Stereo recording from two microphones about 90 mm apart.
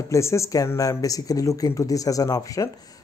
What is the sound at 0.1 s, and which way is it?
Speech, 30° left (ahead or behind).